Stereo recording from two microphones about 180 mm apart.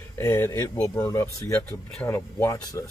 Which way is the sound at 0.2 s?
15° left (ahead or behind).